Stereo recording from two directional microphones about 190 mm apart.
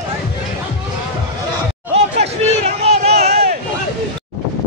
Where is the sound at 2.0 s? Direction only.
35° right (ahead or behind).